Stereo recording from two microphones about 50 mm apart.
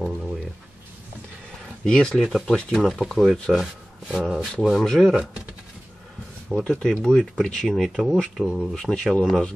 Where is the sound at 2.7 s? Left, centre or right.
Centre.